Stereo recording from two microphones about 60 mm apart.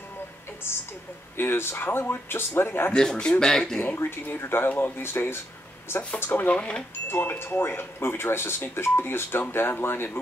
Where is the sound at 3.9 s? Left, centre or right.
Left.